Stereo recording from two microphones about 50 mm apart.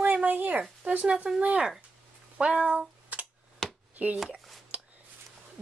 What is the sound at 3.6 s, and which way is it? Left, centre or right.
Chop, centre.